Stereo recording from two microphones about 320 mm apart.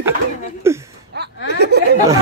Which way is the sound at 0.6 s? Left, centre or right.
Centre.